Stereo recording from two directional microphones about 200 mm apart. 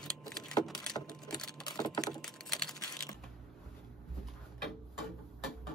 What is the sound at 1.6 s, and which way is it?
Typing, 20° left (ahead or behind).